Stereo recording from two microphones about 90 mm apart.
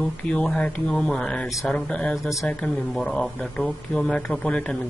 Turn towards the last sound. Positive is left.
turn(degrees=10)  # may be behind; listen again after turning